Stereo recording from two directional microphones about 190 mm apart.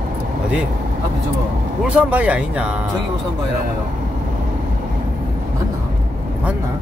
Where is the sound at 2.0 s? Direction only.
5° right (ahead or behind).